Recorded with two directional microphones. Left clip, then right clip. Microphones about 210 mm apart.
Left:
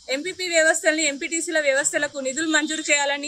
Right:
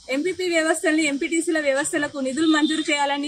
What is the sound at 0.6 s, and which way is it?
A woman's voice, 15° left (ahead or behind).